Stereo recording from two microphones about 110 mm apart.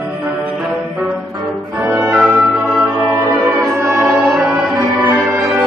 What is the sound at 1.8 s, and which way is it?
Music, 10° right (ahead or behind).